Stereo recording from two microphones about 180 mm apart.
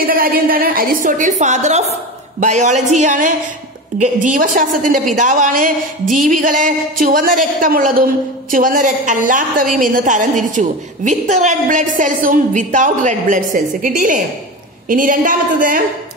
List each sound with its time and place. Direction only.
0.0 s a woman's voice: 55° right (ahead or behind)